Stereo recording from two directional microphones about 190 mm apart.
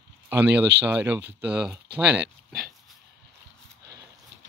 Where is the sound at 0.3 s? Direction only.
10° right (ahead or behind).